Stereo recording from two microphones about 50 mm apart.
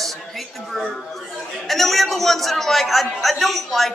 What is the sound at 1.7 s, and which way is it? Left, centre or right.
A man's voice, centre.